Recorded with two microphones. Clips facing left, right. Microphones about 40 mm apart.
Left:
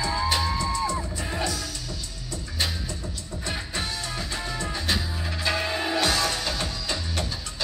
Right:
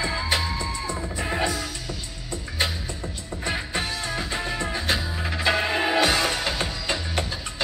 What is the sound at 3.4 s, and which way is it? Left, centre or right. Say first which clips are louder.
Music: right 4 dB; right.